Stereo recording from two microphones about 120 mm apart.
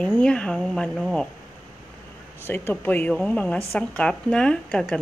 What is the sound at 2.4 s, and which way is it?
Speech, 20° left (ahead or behind).